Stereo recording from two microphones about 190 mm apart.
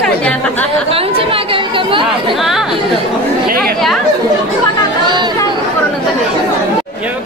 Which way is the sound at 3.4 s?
50° right (ahead or behind).